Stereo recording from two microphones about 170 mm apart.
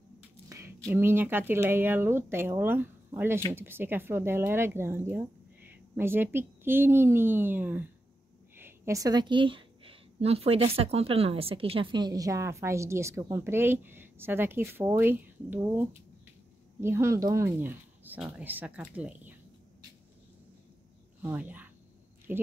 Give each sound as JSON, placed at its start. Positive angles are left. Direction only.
{"t": 0.5, "sound": "a sound", "side_deg": -15}
{"t": 1.5, "sound": "a woman's voice", "side_deg": -15}
{"t": 21.2, "sound": "a woman's voice", "side_deg": -10}